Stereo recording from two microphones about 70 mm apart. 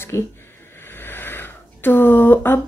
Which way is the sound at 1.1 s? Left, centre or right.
Left.